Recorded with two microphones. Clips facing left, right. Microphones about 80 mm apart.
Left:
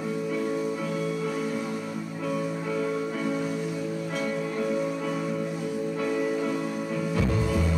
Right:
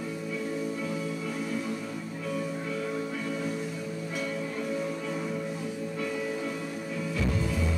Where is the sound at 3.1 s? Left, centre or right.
Left.